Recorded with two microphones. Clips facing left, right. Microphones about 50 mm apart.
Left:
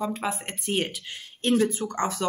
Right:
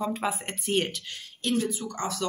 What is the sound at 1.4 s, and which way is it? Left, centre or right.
Speech, left.